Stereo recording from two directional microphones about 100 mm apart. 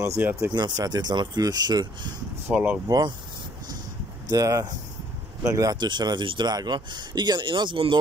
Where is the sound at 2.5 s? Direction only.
15° right (ahead or behind).